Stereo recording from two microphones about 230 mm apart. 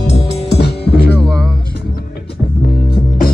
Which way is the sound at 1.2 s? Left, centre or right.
Centre.